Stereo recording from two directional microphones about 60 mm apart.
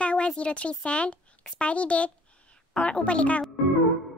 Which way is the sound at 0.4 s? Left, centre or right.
Centre.